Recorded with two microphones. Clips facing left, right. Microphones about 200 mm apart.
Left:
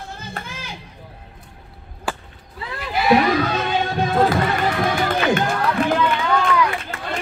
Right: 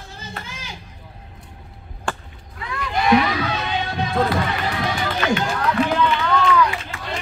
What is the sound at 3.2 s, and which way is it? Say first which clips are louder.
Music: left 4 dB; 45° left (ahead or behind).